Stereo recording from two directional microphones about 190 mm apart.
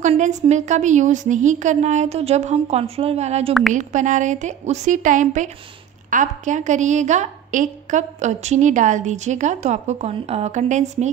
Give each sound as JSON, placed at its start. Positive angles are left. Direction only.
{"t": 0.0, "sound": "a woman's voice", "side_deg": -40}